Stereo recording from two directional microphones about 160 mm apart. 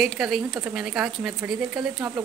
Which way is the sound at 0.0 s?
Centre (ahead or behind).